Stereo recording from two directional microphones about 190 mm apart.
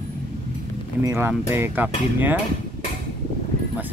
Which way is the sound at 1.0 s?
15° right (ahead or behind).